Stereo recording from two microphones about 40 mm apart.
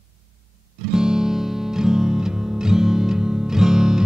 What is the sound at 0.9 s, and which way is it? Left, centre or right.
Music, centre.